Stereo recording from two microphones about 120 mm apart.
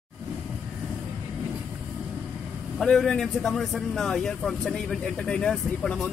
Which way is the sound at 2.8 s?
5° left (ahead or behind).